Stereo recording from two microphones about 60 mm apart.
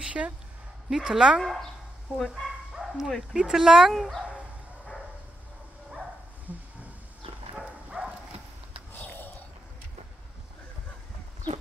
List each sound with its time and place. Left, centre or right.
0.0 s speech: right
0.8 s a woman's voice: centre
1.4 s speech: centre
2.7 s bow-wow: centre
3.3 s a woman's voice: centre
3.9 s speech: centre
6.5 s a sound: right
7.5 s a sound: centre
8.9 s a sound: left